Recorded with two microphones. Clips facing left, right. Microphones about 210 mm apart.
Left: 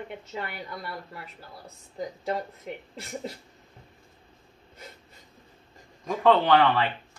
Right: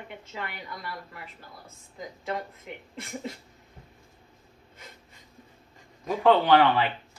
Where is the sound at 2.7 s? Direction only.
40° left (ahead or behind).